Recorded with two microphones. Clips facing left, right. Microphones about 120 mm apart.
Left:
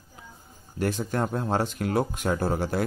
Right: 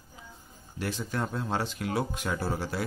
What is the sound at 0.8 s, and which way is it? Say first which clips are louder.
Speech: left 6 dB; 50° left (ahead or behind).